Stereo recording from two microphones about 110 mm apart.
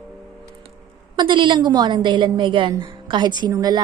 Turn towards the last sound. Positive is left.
turn(degrees=-35)  # may be behind; listen again after turning